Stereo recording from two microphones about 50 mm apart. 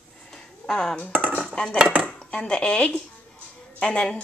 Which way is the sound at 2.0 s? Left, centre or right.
Left.